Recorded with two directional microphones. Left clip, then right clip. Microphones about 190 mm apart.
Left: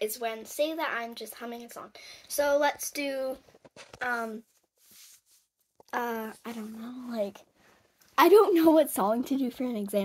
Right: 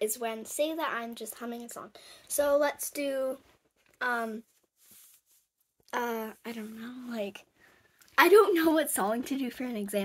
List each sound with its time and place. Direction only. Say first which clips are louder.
0.0 s a woman's voice: even; 30° right (ahead or behind)
5.9 s a woman's voice: left 1 dB; 15° right (ahead or behind)
8.1 s a woman's voice: left 1 dB; centre (ahead or behind)